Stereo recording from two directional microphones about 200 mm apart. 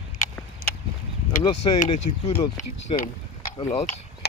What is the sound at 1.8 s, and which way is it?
Speech, 30° left (ahead or behind).